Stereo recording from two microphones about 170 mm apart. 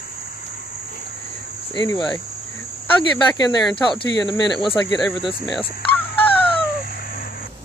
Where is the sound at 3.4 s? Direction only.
25° left (ahead or behind).